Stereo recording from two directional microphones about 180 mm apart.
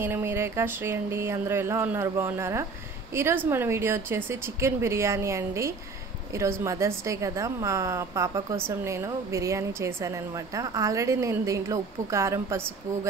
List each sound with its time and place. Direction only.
0.0 s a woman's voice: 15° right (ahead or behind)